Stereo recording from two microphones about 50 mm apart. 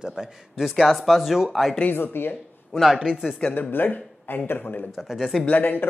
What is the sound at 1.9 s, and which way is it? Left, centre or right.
Speech, left.